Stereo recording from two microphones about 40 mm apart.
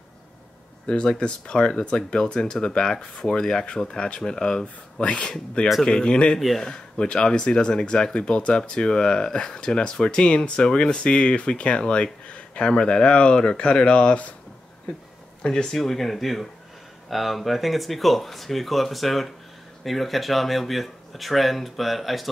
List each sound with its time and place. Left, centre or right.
0.8 s speech: left
5.0 s speech: left
15.4 s speech: centre
15.8 s speech: centre